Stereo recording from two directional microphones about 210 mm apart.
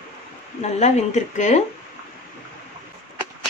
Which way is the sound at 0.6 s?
35° left (ahead or behind).